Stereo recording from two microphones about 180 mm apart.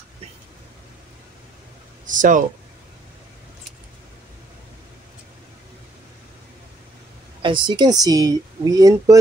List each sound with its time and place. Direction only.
2.0 s speech: 45° right (ahead or behind)
7.4 s speech: 25° right (ahead or behind)